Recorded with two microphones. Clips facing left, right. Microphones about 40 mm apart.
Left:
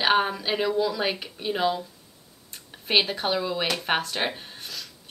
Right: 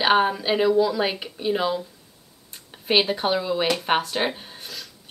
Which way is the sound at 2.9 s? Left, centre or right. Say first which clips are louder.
Right 3 dB; centre.